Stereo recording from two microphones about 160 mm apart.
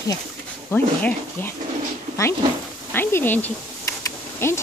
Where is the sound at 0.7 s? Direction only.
10° left (ahead or behind).